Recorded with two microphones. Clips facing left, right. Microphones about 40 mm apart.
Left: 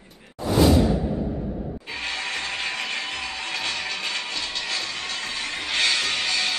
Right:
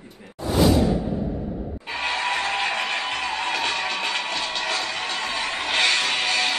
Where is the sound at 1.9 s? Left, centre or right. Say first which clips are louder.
Right 6 dB; right.